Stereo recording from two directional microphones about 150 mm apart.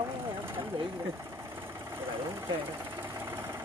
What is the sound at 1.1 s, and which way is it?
Engine, 15° right (ahead or behind).